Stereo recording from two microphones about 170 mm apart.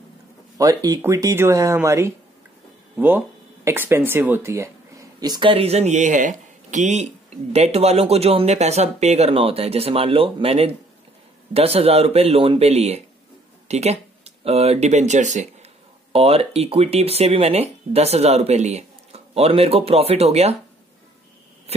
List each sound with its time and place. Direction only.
0.6 s speech: 20° right (ahead or behind); by 20.5 s 40° right (ahead or behind)